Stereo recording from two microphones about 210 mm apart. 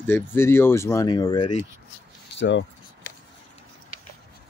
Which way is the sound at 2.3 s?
60° left (ahead or behind).